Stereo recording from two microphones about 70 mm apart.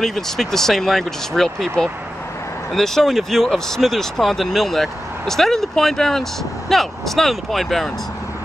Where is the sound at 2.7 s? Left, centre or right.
Centre.